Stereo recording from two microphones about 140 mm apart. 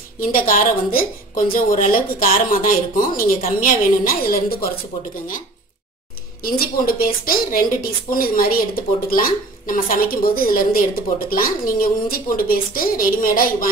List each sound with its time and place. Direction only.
0.2 s a woman's voice: 85° left
6.4 s a woman's voice: 90° left